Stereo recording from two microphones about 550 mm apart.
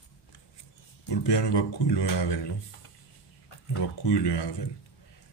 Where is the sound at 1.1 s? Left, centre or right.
Left.